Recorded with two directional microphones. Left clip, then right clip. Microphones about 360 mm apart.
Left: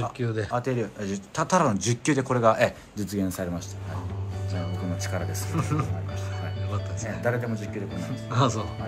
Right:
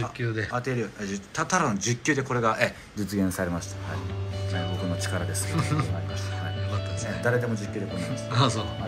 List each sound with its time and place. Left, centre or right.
0.2 s speech: centre
0.5 s speech: left
3.1 s speech: centre
5.1 s speech: centre